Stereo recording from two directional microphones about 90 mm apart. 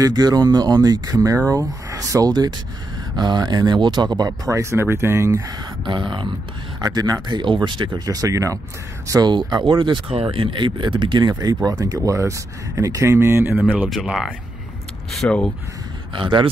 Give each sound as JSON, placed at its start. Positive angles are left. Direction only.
{"t": 0.0, "sound": "speech", "side_deg": -50}
{"t": 4.3, "sound": "speech", "side_deg": -35}
{"t": 5.9, "sound": "speech", "side_deg": -60}
{"t": 6.8, "sound": "speech", "side_deg": -45}
{"t": 8.0, "sound": "speech", "side_deg": -40}
{"t": 9.3, "sound": "speech", "side_deg": -55}
{"t": 14.0, "sound": "speech", "side_deg": -5}
{"t": 15.1, "sound": "speech", "side_deg": 10}
{"t": 16.2, "sound": "speech", "side_deg": -65}